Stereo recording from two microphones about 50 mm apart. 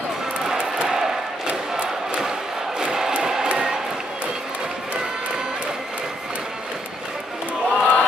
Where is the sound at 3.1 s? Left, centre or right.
Centre.